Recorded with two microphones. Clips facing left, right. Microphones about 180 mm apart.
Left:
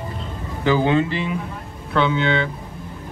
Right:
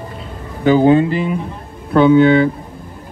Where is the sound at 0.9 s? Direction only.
45° right (ahead or behind).